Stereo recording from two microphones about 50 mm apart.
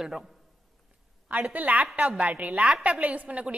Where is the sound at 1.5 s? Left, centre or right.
Right.